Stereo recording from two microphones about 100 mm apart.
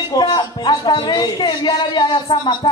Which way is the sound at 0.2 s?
55° left (ahead or behind).